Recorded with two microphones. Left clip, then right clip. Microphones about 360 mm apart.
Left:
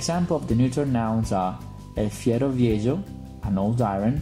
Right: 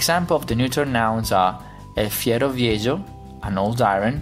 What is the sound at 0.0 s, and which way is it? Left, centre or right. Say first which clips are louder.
Speech: right 7 dB; right.